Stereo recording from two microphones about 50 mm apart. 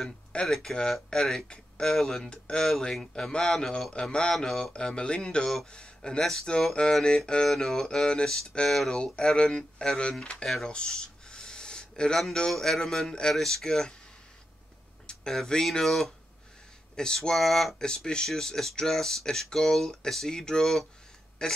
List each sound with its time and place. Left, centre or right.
0.3 s speech: centre
2.2 s speech: centre
8.9 s speech: centre
10.7 s a sound: centre
12.4 s speech: centre
15.0 s speech: centre
17.8 s speech: centre